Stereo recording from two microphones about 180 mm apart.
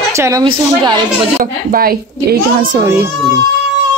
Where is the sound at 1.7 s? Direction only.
55° right (ahead or behind).